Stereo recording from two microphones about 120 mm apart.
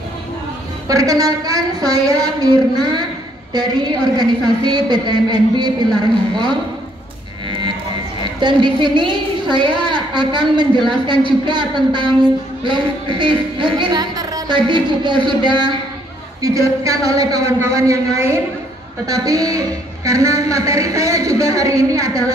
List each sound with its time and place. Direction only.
0.8 s a woman's voice: 30° right (ahead or behind)
8.4 s a woman's voice: 40° right (ahead or behind)
16.3 s a woman's voice: 30° right (ahead or behind)